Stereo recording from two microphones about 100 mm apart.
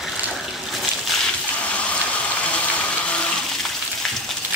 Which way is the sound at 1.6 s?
10° left (ahead or behind).